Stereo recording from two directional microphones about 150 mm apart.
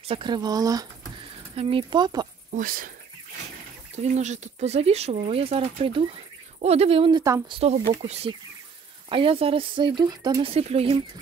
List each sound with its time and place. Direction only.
0.1 s speech: 30° right (ahead or behind)
1.5 s speech: 40° right (ahead or behind)
2.5 s speech: 70° right (ahead or behind)
3.9 s speech: 50° right (ahead or behind); by 10.5 s 25° right (ahead or behind)
10.5 s speech: 40° right (ahead or behind)